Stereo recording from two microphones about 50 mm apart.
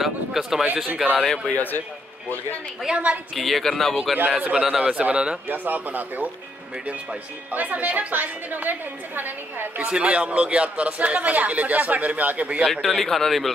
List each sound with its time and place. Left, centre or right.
0.0 s speech: centre
1.5 s a man's voice: left
2.9 s speech: right
3.3 s speech: centre
4.6 s speech: centre
5.5 s a woman's voice: right
7.5 s a woman's voice: right
9.8 s speech: right
12.6 s speech: centre